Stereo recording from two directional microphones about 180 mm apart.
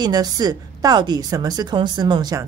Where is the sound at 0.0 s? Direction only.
20° right (ahead or behind).